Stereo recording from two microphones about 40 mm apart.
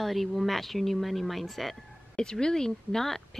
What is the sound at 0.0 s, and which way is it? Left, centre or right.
A woman's voice, centre.